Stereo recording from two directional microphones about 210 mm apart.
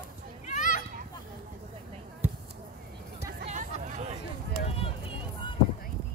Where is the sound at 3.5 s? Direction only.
35° right (ahead or behind).